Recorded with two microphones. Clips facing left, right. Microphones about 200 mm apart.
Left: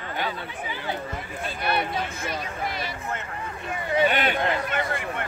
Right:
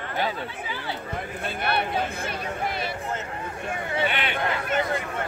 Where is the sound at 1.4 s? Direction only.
55° right (ahead or behind).